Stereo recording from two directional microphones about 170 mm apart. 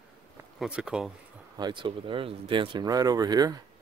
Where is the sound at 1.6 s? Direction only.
25° right (ahead or behind).